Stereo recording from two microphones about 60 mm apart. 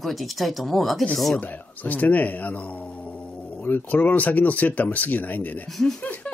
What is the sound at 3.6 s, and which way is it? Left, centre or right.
Speech, left.